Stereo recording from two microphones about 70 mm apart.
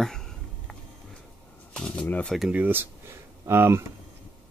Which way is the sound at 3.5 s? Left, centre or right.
Right.